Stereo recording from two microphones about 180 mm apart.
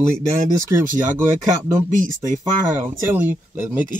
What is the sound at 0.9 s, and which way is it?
Speech, 45° right (ahead or behind).